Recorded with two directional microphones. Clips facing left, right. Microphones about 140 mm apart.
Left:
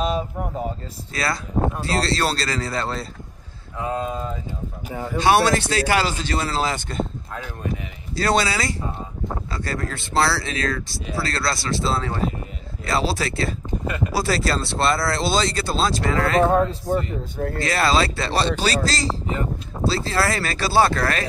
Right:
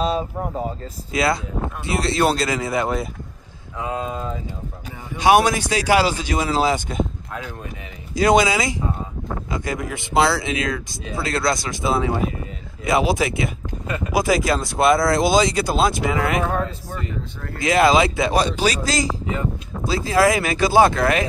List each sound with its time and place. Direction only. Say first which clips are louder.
0.0 s speech: right 2 dB; 30° right (ahead or behind)
1.1 s speech: right 4 dB; 20° right (ahead or behind)
5.2 s speech: right 2 dB; 15° right (ahead or behind)
8.2 s speech: right 5 dB; 15° right (ahead or behind)
16.4 s speech: left 5 dB; 25° left (ahead or behind)
17.6 s speech: right 6 dB; 15° right (ahead or behind)